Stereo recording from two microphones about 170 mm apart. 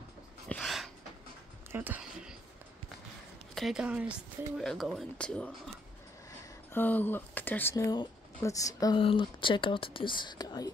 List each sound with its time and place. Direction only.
0.5 s a sound: centre (ahead or behind)
1.7 s music: 10° right (ahead or behind)
3.5 s speech: centre (ahead or behind)
6.7 s speech: 10° left (ahead or behind)